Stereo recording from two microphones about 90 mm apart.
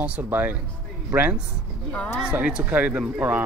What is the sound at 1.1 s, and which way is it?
Speech, 40° right (ahead or behind).